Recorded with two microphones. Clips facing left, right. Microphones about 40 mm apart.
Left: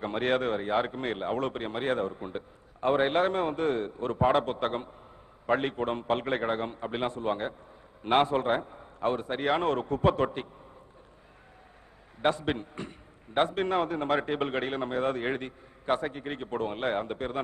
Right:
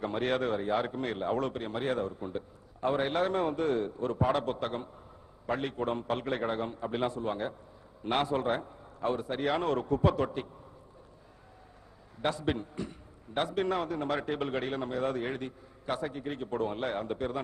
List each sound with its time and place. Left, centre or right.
0.0 s a man's voice: left
12.2 s a man's voice: left